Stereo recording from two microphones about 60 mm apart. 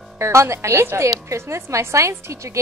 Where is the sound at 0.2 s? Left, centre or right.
Right.